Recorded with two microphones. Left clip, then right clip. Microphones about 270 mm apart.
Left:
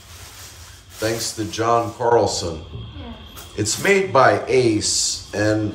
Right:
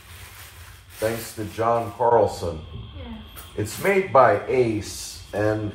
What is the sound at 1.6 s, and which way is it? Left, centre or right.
Speech, centre.